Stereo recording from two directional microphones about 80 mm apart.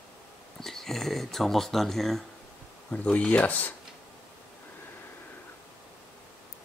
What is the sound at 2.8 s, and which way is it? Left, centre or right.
Speech, centre.